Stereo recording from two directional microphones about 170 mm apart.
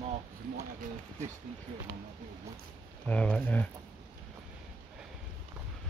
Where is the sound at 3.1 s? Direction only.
5° left (ahead or behind).